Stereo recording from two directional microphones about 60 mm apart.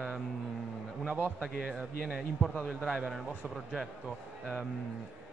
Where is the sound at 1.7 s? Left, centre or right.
Centre.